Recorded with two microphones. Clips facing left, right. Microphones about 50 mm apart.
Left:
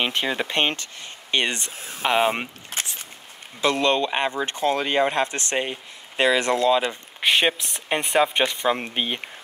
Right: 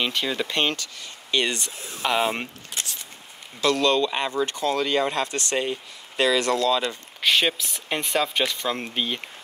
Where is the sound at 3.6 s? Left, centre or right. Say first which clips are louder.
Even; left.